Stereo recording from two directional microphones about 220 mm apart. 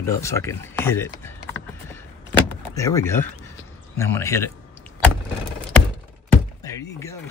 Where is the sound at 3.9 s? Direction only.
10° left (ahead or behind).